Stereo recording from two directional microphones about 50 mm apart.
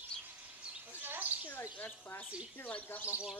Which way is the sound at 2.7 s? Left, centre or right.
Left.